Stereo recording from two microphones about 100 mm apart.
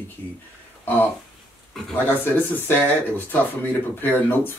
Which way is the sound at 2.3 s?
20° left (ahead or behind).